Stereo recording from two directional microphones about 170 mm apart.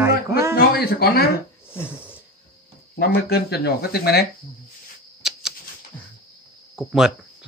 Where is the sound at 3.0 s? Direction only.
70° left (ahead or behind).